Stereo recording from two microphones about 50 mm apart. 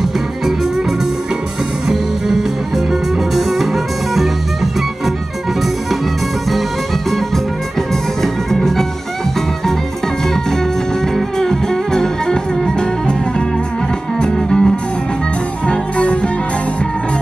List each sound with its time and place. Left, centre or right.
1.9 s music: centre
7.9 s music: centre
11.1 s music: centre
14.2 s music: centre